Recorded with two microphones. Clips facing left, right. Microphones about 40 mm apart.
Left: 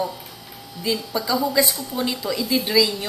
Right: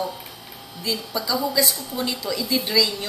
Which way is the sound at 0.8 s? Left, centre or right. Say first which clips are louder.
Left 3 dB; centre.